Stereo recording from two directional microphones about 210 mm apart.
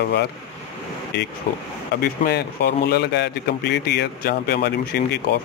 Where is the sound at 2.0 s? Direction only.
50° left (ahead or behind).